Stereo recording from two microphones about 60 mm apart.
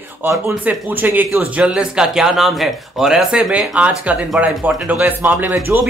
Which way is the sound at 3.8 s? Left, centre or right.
Right.